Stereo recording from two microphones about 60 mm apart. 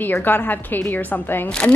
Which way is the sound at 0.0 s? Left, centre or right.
Left.